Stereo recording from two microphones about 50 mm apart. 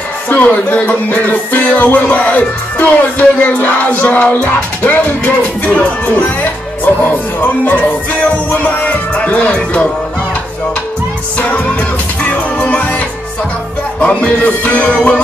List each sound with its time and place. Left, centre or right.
0.3 s music: left
11.3 s music: left